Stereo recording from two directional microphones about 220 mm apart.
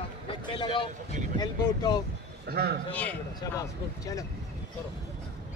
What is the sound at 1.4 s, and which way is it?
Speech, 20° left (ahead or behind).